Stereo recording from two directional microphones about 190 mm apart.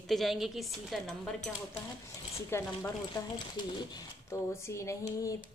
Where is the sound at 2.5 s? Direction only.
15° left (ahead or behind).